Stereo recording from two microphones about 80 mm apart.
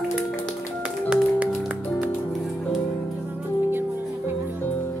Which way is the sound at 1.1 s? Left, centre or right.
Centre.